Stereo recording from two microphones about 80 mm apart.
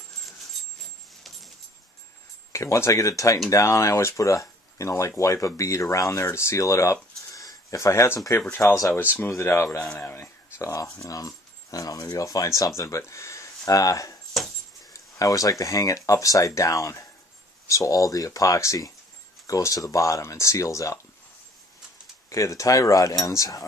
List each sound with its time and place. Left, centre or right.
2.5 s speech: left
8.5 s speech: left
10.6 s speech: left
14.9 s a sound: left
15.6 s speech: left
22.3 s speech: left